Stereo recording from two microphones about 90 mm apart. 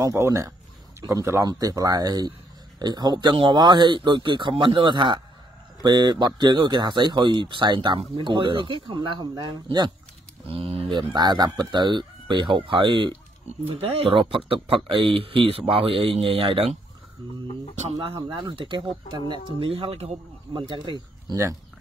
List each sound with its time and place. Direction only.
0.0 s speech: 35° right (ahead or behind); by 3.3 s 55° right (ahead or behind)
3.3 s speech: 65° right (ahead or behind)
10.5 s speech: 90° right; by 13.1 s 60° right (ahead or behind)
13.7 s speech: 90° right
18.0 s speech: 65° right (ahead or behind); by 20.0 s 90° right
20.5 s speech: 60° right (ahead or behind)